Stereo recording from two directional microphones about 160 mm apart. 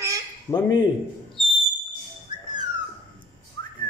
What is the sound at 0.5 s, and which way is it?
Speech, 25° left (ahead or behind).